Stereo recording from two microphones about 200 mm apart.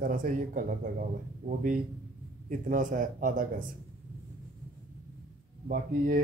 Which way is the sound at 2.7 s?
40° right (ahead or behind).